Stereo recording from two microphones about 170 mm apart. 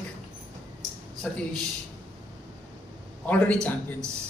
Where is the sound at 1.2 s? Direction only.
5° left (ahead or behind).